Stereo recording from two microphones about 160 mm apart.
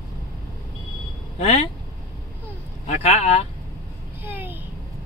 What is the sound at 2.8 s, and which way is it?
Speech, 45° left (ahead or behind).